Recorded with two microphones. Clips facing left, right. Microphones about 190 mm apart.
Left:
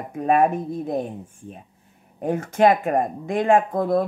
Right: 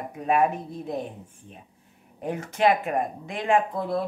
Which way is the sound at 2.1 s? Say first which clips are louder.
Left 7 dB; 50° left (ahead or behind).